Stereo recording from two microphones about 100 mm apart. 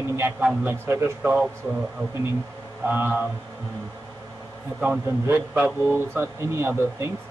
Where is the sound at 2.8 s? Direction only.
20° right (ahead or behind).